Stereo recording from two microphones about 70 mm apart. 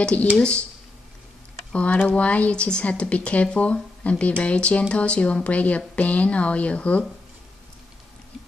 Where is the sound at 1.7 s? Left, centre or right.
Centre.